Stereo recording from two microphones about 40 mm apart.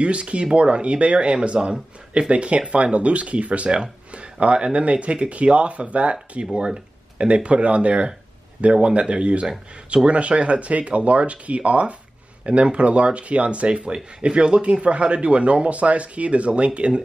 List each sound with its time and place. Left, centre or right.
0.0 s speech: right
6.4 s speech: centre
9.1 s speech: right